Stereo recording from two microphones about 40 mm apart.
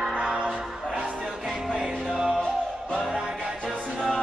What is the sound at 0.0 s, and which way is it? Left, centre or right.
Music, centre.